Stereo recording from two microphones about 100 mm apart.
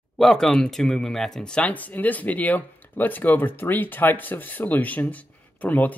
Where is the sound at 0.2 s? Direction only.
5° left (ahead or behind).